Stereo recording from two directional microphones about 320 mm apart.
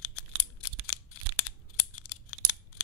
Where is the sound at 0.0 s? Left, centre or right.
Left.